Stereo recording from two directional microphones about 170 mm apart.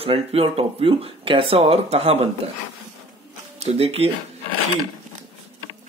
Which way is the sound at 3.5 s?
35° right (ahead or behind).